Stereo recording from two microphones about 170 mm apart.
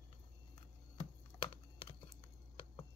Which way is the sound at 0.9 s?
30° left (ahead or behind).